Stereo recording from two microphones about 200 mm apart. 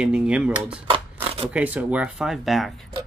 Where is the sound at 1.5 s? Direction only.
5° right (ahead or behind).